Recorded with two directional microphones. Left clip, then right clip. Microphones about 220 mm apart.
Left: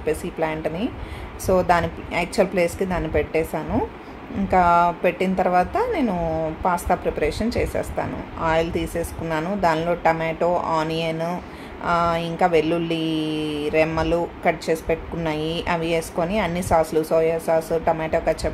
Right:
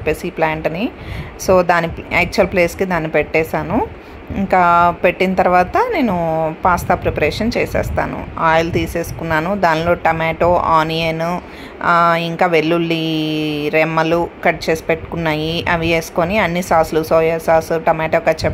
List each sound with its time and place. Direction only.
0.0 s a woman's voice: 15° right (ahead or behind)